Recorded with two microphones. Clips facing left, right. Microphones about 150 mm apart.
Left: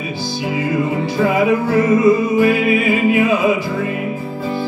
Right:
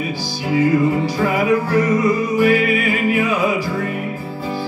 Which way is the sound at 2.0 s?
25° left (ahead or behind).